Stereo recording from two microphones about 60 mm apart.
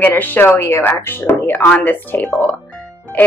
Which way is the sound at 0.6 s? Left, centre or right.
Left.